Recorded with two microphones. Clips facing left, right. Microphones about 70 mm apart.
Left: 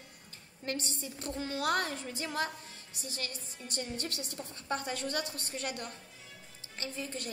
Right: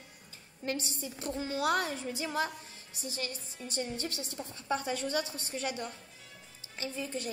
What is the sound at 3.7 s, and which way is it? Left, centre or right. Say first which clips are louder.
Speech: right 2 dB; centre.